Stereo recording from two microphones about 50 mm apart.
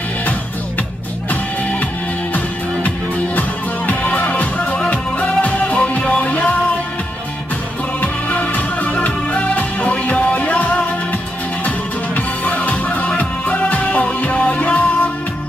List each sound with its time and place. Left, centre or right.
3.3 s music: left
8.0 s music: left
12.4 s music: left